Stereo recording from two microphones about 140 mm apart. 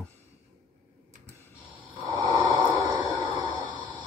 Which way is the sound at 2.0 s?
25° right (ahead or behind).